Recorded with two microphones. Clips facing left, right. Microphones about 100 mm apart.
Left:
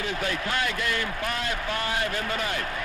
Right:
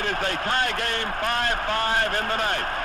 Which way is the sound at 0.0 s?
50° right (ahead or behind).